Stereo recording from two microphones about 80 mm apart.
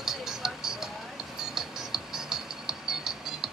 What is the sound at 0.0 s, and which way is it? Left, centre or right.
Music, centre.